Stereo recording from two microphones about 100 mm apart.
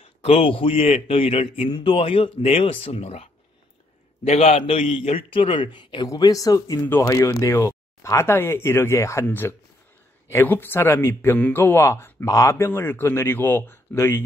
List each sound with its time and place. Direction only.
0.0 s a man's voice: 70° left (ahead or behind); by 6.0 s 50° left (ahead or behind)
6.0 s speech: 35° left (ahead or behind)